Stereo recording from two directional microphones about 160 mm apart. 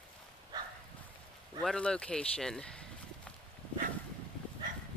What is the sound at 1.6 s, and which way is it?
Speech, 5° left (ahead or behind).